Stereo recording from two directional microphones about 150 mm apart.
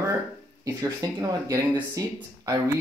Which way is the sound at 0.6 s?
25° right (ahead or behind).